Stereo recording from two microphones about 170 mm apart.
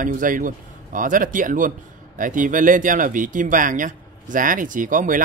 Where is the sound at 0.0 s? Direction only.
50° right (ahead or behind).